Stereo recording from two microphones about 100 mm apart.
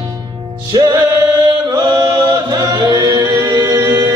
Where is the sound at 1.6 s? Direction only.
40° right (ahead or behind); by 3.5 s 25° right (ahead or behind).